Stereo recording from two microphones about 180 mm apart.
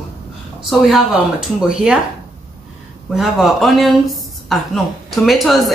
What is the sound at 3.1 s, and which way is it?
Speech, centre (ahead or behind).